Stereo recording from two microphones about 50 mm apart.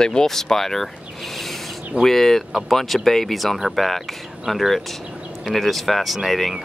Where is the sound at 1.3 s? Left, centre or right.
Centre.